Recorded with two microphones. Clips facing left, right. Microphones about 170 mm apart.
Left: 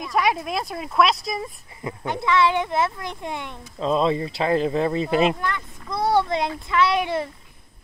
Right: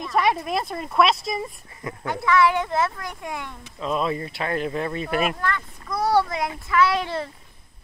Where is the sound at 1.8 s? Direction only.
20° left (ahead or behind).